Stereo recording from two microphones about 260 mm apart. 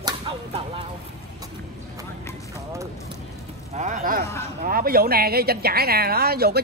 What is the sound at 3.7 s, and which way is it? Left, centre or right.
Speech, right.